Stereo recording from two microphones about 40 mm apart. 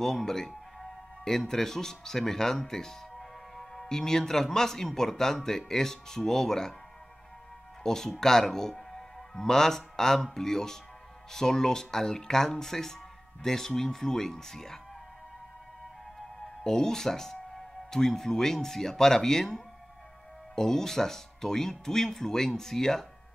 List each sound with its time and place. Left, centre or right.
0.0 s speech: centre
7.8 s speech: centre
16.6 s speech: centre